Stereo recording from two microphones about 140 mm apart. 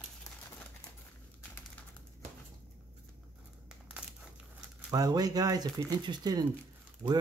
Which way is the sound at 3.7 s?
10° right (ahead or behind).